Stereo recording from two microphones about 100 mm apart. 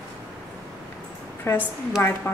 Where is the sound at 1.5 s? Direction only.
25° left (ahead or behind).